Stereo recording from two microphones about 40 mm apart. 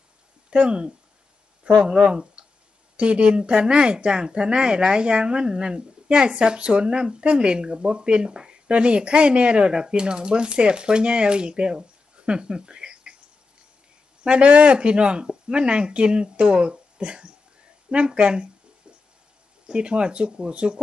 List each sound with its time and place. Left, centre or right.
0.5 s speech: right
12.3 s a sound: right
14.2 s speech: right
19.6 s speech: right